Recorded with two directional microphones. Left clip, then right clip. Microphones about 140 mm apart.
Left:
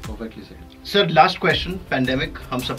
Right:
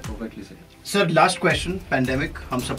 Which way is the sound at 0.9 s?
5° right (ahead or behind).